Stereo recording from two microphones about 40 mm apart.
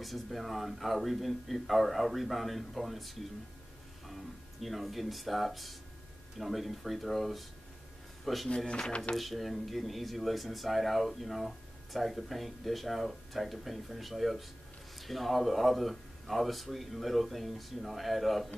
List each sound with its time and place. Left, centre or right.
0.0 s speech: centre
8.5 s speech: left
9.1 s speech: centre